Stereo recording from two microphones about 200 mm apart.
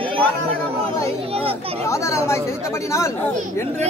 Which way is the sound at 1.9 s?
15° left (ahead or behind).